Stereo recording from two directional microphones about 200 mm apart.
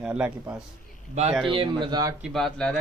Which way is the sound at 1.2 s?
35° right (ahead or behind).